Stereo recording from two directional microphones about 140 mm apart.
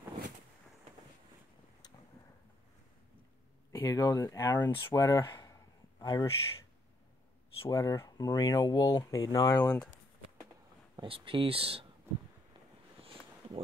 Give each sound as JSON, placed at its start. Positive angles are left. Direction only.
{"t": 3.7, "sound": "speech", "side_deg": 20}
{"t": 4.8, "sound": "a sound", "side_deg": 25}
{"t": 7.7, "sound": "speech", "side_deg": 20}
{"t": 11.0, "sound": "speech", "side_deg": -40}